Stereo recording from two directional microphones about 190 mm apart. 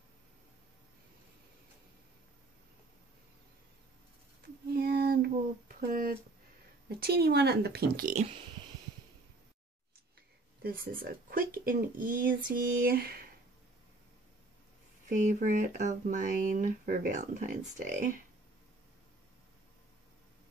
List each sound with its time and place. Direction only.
4.7 s female singing: 55° right (ahead or behind)
7.0 s a woman's voice: 55° right (ahead or behind)
10.6 s speech: 50° right (ahead or behind)
15.0 s speech: 40° right (ahead or behind)